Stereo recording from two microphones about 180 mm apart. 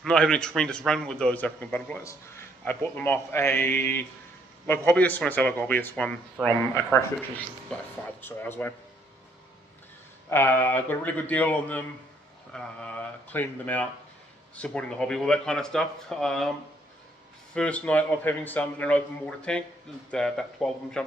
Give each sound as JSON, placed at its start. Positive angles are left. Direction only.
{"t": 0.0, "sound": "a man's voice", "side_deg": 5}
{"t": 10.3, "sound": "a man's voice", "side_deg": 10}
{"t": 17.6, "sound": "a man's voice", "side_deg": 5}